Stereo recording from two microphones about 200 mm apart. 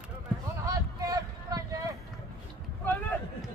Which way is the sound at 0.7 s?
15° right (ahead or behind).